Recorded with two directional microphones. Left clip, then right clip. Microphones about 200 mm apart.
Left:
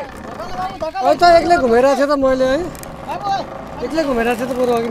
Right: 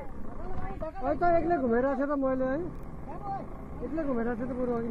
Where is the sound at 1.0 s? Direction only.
30° left (ahead or behind).